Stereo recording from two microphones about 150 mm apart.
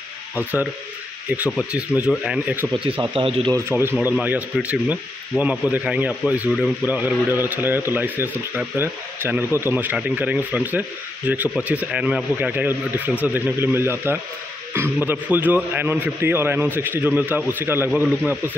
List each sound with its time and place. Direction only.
1.3 s speech: 10° right (ahead or behind)
3.2 s speech: 35° right (ahead or behind)
3.5 s speech: 15° right (ahead or behind)